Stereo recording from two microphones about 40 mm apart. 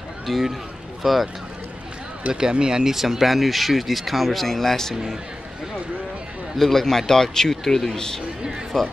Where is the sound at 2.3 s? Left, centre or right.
Centre.